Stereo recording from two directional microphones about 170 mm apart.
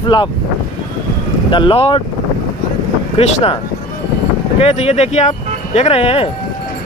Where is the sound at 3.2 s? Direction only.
40° left (ahead or behind).